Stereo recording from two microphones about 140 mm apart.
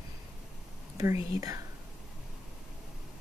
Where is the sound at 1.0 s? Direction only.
20° right (ahead or behind).